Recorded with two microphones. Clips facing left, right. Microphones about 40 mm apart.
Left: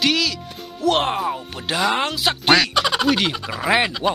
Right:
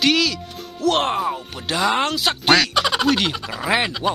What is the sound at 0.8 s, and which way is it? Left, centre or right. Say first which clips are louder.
Speech: even; centre.